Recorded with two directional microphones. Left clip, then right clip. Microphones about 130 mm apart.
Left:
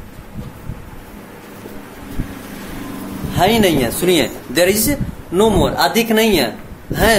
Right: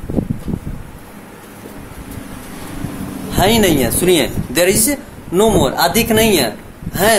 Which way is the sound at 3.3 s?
30° right (ahead or behind).